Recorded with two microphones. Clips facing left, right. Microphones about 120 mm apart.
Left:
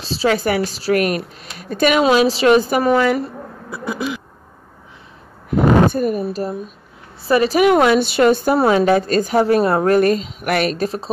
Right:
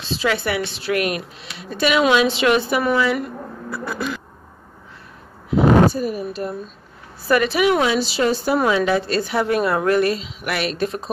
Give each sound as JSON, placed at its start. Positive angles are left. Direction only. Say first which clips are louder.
{"t": 0.0, "sound": "a woman's voice", "louder": "left 4 dB", "side_deg": 35}
{"t": 3.7, "sound": "speech", "louder": "left 3 dB", "side_deg": 15}
{"t": 5.6, "sound": "a sound", "louder": "even", "side_deg": 0}
{"t": 5.9, "sound": "a woman's voice", "louder": "left 3 dB", "side_deg": 50}
{"t": 6.2, "sound": "a woman's voice", "louder": "left 3 dB", "side_deg": 35}
{"t": 8.5, "sound": "a woman's voice", "louder": "left 4 dB", "side_deg": 40}